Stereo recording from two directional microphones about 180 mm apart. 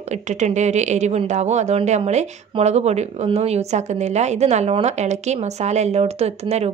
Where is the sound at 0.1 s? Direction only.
40° right (ahead or behind).